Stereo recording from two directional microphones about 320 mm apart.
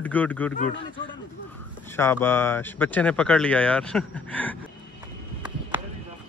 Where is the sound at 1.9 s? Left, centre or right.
Centre.